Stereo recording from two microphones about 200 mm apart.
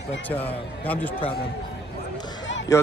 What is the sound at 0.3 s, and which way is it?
Speech, 10° left (ahead or behind).